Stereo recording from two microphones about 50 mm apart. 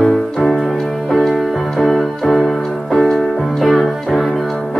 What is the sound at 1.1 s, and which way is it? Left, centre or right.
Keyboard, centre.